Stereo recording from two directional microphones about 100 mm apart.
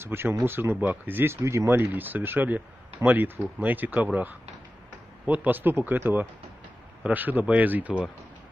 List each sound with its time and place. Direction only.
0.0 s speech: 25° right (ahead or behind)